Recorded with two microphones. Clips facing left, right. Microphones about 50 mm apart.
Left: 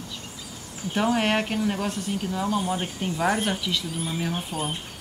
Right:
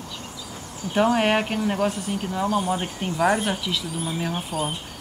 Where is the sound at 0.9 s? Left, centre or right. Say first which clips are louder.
Right 3 dB; centre.